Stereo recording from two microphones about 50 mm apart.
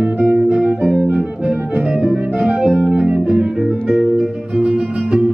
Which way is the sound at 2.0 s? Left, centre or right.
Right.